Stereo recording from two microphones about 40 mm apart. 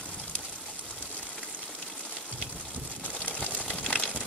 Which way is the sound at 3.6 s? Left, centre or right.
Left.